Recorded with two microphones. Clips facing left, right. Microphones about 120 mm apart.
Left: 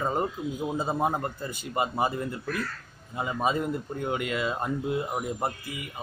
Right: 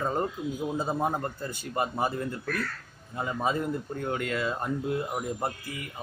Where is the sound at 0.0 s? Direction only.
15° left (ahead or behind).